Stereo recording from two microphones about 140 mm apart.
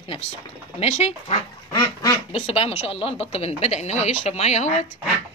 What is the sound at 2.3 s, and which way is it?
Speech, 45° left (ahead or behind).